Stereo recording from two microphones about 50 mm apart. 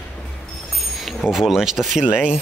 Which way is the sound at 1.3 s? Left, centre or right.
Centre.